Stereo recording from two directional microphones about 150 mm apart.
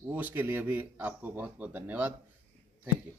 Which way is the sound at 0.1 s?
15° right (ahead or behind).